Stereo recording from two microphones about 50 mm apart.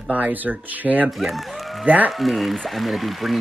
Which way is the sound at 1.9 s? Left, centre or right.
Right.